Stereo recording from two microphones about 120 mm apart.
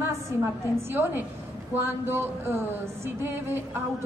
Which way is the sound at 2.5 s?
20° right (ahead or behind).